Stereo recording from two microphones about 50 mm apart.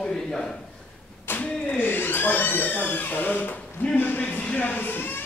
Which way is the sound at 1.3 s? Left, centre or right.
Left.